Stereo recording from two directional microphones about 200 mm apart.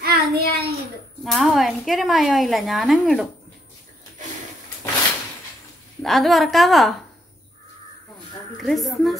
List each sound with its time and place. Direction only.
0.0 s child singing: 50° right (ahead or behind)
1.2 s a woman's voice: centre (ahead or behind)
6.0 s a woman's voice: centre (ahead or behind)
8.5 s a woman's voice: centre (ahead or behind)